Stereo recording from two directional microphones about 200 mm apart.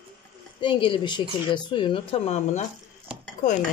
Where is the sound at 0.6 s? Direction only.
25° left (ahead or behind).